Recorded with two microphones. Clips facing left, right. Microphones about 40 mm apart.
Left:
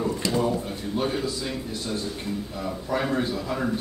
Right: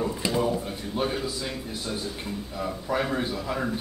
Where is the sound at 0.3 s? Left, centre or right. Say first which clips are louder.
Even; centre.